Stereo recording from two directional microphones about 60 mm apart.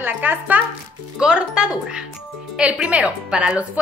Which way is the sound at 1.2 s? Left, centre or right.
Centre.